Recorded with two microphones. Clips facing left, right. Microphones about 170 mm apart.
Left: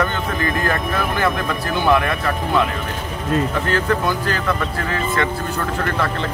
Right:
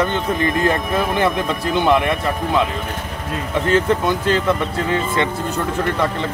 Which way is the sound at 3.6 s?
20° right (ahead or behind).